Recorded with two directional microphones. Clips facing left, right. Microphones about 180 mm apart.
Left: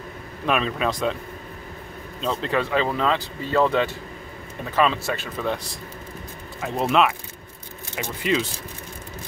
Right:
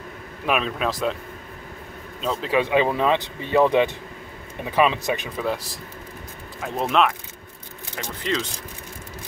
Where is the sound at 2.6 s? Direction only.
15° right (ahead or behind).